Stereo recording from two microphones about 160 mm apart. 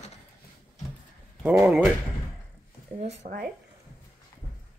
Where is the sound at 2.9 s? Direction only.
45° right (ahead or behind).